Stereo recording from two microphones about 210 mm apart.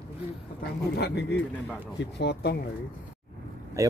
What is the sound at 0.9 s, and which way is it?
Speech, 50° left (ahead or behind).